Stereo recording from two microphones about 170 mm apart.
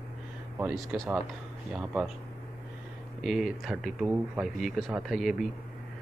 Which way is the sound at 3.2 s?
Centre (ahead or behind).